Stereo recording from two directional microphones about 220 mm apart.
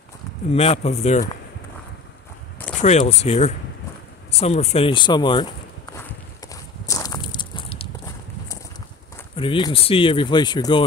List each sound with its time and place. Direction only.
0.5 s speech: 25° left (ahead or behind)
2.8 s speech: 30° left (ahead or behind)
5.9 s walk: 15° left (ahead or behind)
9.4 s speech: 25° left (ahead or behind)